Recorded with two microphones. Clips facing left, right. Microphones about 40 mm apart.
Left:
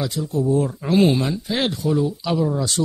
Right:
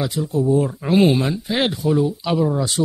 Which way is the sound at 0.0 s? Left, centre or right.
Right.